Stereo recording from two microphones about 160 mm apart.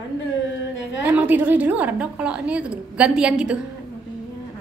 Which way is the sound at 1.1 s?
10° right (ahead or behind).